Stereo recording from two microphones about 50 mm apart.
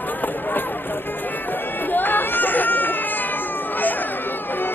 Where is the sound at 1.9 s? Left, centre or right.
Left.